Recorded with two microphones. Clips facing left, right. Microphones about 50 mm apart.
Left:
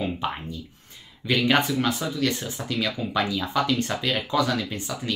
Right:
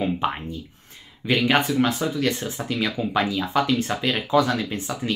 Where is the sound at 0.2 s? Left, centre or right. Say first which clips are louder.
Right 4 dB; right.